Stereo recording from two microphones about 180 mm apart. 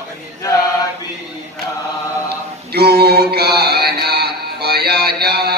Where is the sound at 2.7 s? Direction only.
60° right (ahead or behind).